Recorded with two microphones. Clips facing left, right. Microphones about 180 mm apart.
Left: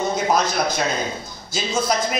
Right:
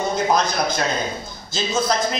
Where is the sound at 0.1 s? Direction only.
10° left (ahead or behind).